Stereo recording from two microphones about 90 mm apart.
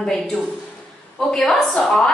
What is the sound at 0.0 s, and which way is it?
A woman's voice, 5° left (ahead or behind).